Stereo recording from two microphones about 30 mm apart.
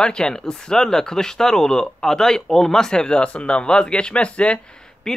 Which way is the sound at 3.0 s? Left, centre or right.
Left.